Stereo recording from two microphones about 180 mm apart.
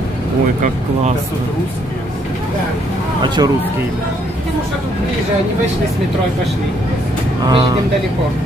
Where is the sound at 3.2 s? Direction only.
25° right (ahead or behind).